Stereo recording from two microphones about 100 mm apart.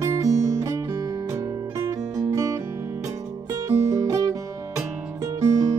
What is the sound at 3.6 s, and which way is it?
Music, 30° right (ahead or behind).